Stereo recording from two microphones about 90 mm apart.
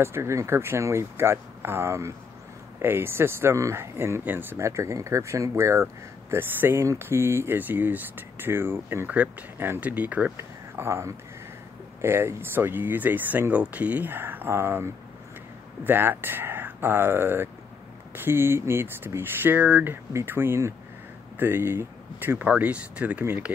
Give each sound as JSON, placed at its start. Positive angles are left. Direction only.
{"t": 0.0, "sound": "speech", "side_deg": -30}
{"t": 10.3, "sound": "speech", "side_deg": -30}